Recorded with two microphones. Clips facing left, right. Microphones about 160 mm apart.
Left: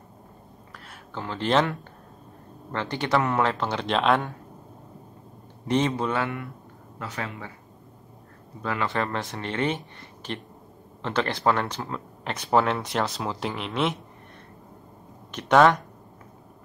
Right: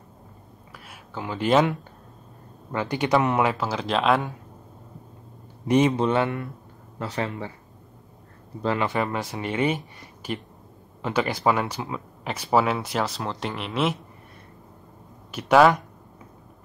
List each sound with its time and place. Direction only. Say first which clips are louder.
0.8 s speech: right 1 dB; 10° right (ahead or behind)
5.7 s a man's voice: right 4 dB; 15° right (ahead or behind); by 7.5 s 30° right (ahead or behind)
8.6 s a man's voice: right 4 dB; 20° right (ahead or behind)
8.9 s speech: right 2 dB; 5° right (ahead or behind)
15.3 s speech: right 1 dB; 5° right (ahead or behind)